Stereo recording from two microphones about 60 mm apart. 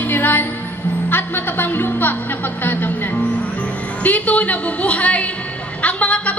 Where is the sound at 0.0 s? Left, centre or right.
Left.